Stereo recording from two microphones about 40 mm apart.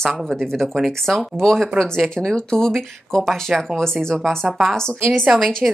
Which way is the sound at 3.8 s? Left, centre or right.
Centre.